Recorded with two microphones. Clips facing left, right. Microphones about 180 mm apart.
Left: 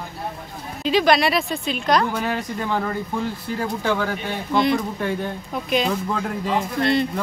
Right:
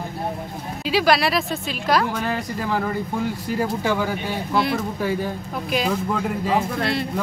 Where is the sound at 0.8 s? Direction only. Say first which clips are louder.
Left 1 dB; 5° right (ahead or behind).